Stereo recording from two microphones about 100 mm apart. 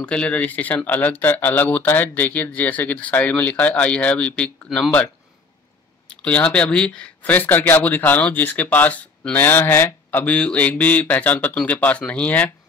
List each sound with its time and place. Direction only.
0.0 s speech: 10° left (ahead or behind)
6.0 s speech: 10° left (ahead or behind)